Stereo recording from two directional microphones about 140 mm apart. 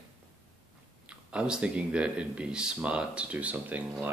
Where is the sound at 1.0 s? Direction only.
5° right (ahead or behind).